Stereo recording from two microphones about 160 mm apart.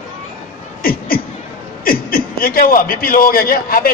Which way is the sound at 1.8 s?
65° left (ahead or behind).